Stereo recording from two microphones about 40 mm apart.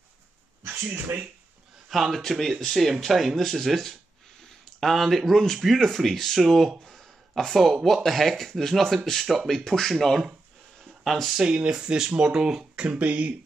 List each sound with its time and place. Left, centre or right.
0.7 s speech: right
1.9 s speech: centre
11.3 s speech: right
13.0 s speech: right